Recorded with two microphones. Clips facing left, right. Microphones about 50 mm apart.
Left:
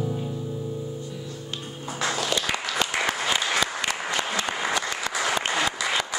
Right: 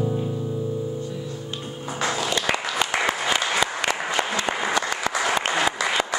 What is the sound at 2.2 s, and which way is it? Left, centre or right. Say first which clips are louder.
Applause: right 3 dB; right.